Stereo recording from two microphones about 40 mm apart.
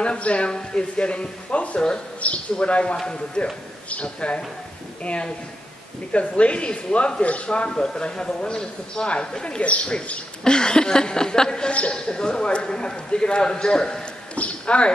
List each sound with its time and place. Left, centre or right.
0.0 s speech: left
3.9 s a man's voice: left
9.6 s a man's voice: left
10.4 s speech: centre
14.3 s speech: left